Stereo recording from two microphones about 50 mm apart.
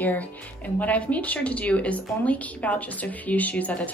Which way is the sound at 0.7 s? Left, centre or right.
Left.